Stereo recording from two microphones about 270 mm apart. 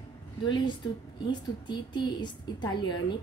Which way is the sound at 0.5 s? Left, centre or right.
Centre.